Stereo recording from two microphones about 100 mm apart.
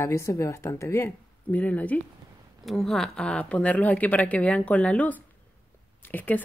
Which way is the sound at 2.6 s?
Centre (ahead or behind).